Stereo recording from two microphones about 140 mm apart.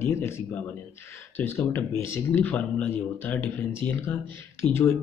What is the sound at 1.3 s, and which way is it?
Speech, 15° left (ahead or behind).